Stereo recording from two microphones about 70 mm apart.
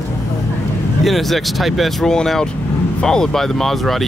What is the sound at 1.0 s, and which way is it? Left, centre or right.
Speech, centre.